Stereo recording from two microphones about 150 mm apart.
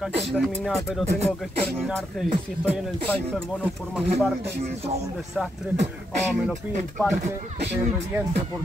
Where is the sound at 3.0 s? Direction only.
5° left (ahead or behind).